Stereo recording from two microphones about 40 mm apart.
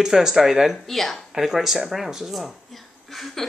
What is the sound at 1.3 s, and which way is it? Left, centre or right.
Speech, centre.